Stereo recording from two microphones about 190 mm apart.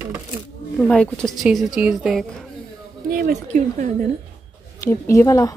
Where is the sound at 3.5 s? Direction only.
40° right (ahead or behind).